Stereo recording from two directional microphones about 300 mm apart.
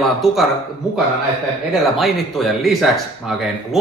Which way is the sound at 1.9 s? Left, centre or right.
Centre.